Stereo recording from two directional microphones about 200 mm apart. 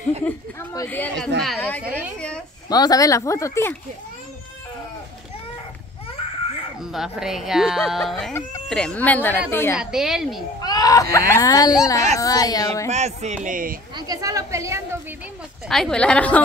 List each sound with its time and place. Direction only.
0.2 s a child's voice: 10° left (ahead or behind)
2.7 s a child's voice: 20° left (ahead or behind)
6.8 s a child's voice: centre (ahead or behind)
9.8 s speech: 5° right (ahead or behind)
10.6 s a child's voice: 20° left (ahead or behind)
12.9 s speech: 35° right (ahead or behind)
13.9 s speech: 20° right (ahead or behind)
15.7 s speech: 5° left (ahead or behind)